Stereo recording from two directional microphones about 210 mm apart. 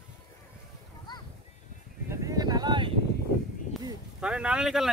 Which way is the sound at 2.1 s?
15° right (ahead or behind).